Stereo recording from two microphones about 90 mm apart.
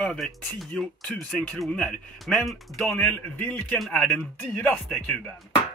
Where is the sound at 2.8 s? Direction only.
15° left (ahead or behind).